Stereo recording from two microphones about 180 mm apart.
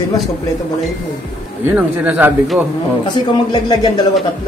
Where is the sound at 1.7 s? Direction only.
10° right (ahead or behind).